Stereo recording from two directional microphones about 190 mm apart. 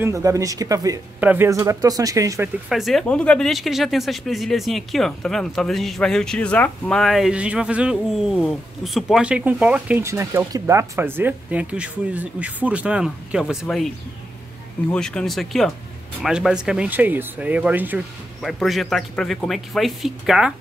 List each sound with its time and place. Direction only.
0.0 s speech: 15° right (ahead or behind)
2.7 s speech: centre (ahead or behind)